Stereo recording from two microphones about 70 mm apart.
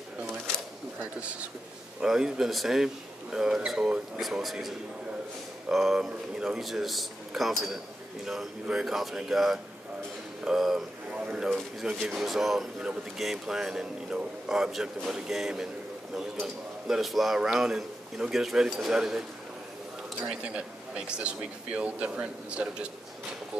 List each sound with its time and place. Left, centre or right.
2.0 s a man's voice: centre
11.1 s a sound: centre
11.8 s a man's voice: centre
20.2 s a man's voice: centre